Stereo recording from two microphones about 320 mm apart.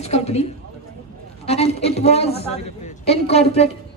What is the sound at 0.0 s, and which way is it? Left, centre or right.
A woman's voice, centre.